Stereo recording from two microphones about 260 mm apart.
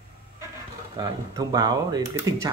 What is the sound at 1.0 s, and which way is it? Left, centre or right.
Speech, centre.